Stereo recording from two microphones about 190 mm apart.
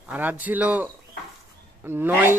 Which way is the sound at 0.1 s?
10° right (ahead or behind).